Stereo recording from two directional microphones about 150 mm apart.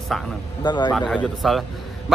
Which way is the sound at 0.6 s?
30° left (ahead or behind).